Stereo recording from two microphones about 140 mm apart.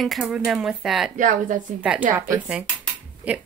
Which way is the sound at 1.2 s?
70° right (ahead or behind).